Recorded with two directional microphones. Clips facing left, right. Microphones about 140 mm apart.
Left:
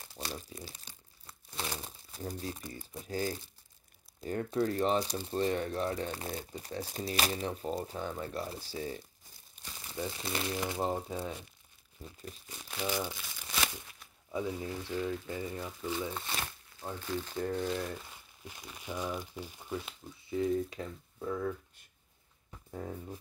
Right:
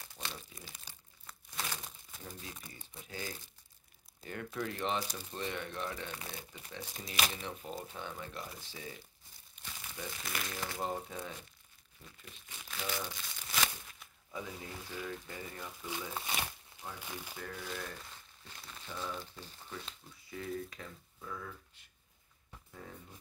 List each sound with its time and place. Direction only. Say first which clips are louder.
0.1 s crumpling: left 5 dB; 35° left (ahead or behind)
4.2 s speech: left 8 dB; 35° left (ahead or behind)
9.6 s crumpling: left 1 dB; 40° left (ahead or behind)
9.9 s speech: left 6 dB; 30° left (ahead or behind)
12.0 s speech: left 9 dB; 35° left (ahead or behind)
12.8 s speech: left 6 dB; 15° left (ahead or behind)
14.3 s speech: left 8 dB; 25° left (ahead or behind)
15.9 s speech: left 3 dB; 5° right (ahead or behind)
17.4 s speech: left 13 dB; 35° left (ahead or behind)
17.8 s speech: left 6 dB; 10° left (ahead or behind)
20.2 s speech: left 10 dB; 25° left (ahead or behind); by 21.5 s 40° left (ahead or behind)
22.7 s speech: left 10 dB; 45° left (ahead or behind)